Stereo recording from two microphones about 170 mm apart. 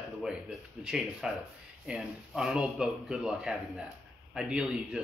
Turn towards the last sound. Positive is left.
turn(degrees=-5)  # may be behind; listen again after turning